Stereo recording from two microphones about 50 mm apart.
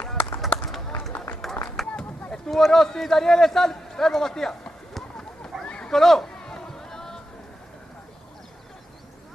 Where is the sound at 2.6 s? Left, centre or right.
Centre.